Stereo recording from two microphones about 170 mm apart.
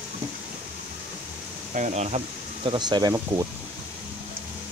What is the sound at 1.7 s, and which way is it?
Speech, 45° right (ahead or behind).